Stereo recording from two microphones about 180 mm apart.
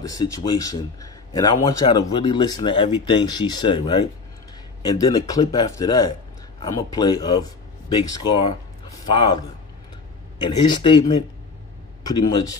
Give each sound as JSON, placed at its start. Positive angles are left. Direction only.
{"t": 0.0, "sound": "a man's voice", "side_deg": 20}
{"t": 10.7, "sound": "a man's voice", "side_deg": 25}